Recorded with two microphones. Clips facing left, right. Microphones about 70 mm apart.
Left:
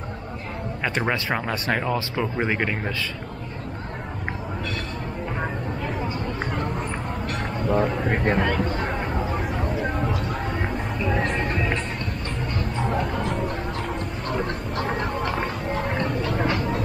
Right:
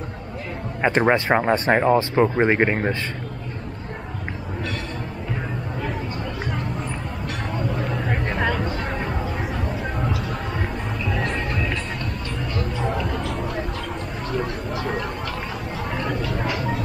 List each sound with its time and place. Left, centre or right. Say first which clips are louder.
0.8 s speech: right 7 dB; right
7.8 s a sound: left 2 dB; centre
8.4 s music: even; centre